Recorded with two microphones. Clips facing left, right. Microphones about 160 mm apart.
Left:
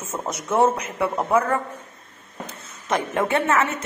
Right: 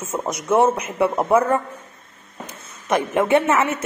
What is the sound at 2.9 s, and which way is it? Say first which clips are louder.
Speech: right 5 dB; 20° right (ahead or behind).